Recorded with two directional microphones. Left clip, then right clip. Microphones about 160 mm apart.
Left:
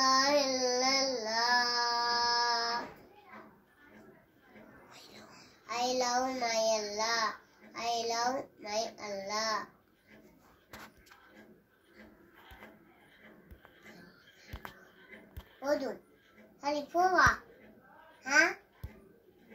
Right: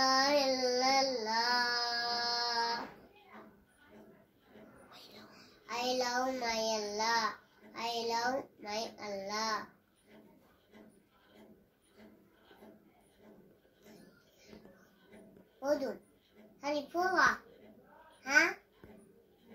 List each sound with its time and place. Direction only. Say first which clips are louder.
0.0 s child singing: left 2 dB; 20° right (ahead or behind)
5.7 s child singing: left 3 dB; 20° right (ahead or behind)
13.8 s a sound: left 3 dB; 20° right (ahead or behind)
15.6 s a child's voice: left 1 dB; 20° right (ahead or behind)